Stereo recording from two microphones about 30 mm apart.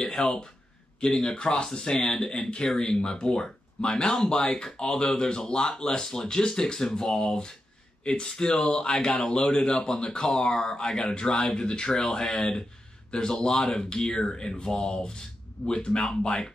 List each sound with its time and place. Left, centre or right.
0.2 s speech: left